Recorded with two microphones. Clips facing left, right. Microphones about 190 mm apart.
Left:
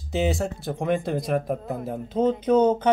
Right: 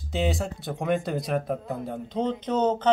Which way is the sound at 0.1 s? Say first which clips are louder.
Left 3 dB; centre (ahead or behind).